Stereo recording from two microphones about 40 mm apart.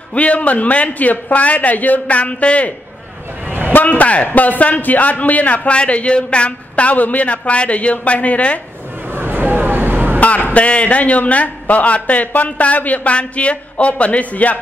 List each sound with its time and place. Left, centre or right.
0.1 s a man's voice: left
3.4 s a sound: right
3.7 s a man's voice: left
6.7 s a man's voice: left
9.1 s vehicle: right
10.2 s a man's voice: left